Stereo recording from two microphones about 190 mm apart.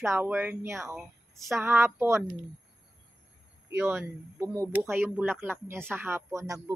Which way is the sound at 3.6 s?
10° right (ahead or behind).